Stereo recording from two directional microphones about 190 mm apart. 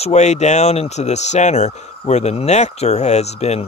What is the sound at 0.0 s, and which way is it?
Speech, 35° left (ahead or behind).